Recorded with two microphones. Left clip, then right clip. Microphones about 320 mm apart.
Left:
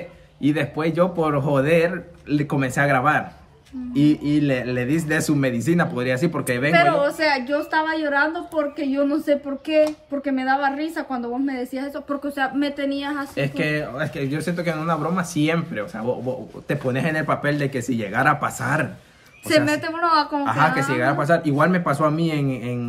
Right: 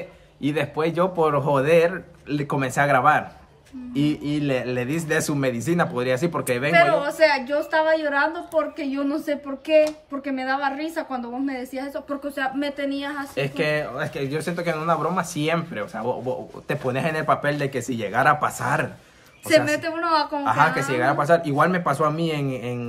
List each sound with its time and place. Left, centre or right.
0.4 s speech: centre
6.7 s a woman's voice: centre
13.4 s speech: centre
19.4 s a woman's voice: centre
20.4 s speech: centre